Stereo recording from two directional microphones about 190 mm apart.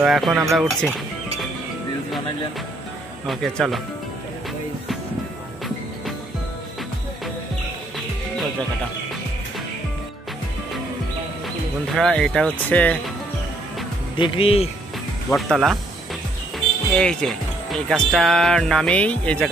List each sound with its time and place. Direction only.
0.0 s speech: centre (ahead or behind)
3.3 s speech: centre (ahead or behind)
11.9 s speech: 5° left (ahead or behind)
14.1 s speech: 25° left (ahead or behind)
15.2 s speech: centre (ahead or behind)